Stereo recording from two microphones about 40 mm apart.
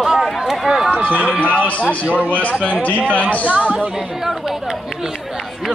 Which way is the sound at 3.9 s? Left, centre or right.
Centre.